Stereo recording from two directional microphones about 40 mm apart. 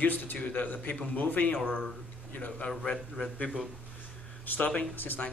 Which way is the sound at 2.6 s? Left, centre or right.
Left.